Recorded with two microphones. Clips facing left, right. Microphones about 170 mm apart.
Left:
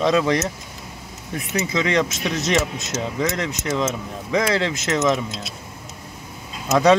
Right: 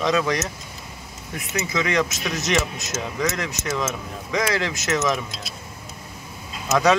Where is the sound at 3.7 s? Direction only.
25° left (ahead or behind).